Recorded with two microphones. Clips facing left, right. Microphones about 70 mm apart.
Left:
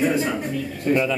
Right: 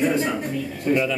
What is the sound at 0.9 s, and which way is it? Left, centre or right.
Speech, left.